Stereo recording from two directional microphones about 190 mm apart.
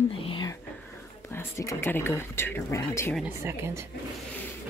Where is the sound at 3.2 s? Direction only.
15° right (ahead or behind).